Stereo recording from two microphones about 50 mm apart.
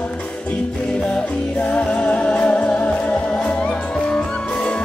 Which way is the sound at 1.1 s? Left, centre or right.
Left.